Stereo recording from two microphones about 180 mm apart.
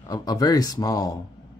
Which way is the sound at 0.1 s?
20° left (ahead or behind).